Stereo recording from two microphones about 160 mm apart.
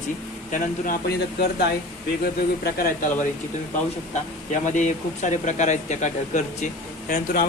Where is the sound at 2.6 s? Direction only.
65° left (ahead or behind).